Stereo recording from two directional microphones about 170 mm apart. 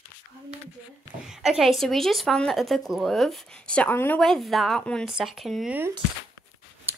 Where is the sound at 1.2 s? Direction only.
5° right (ahead or behind).